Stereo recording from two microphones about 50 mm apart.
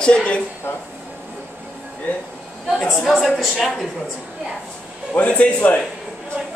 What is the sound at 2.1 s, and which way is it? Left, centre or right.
Speech, left.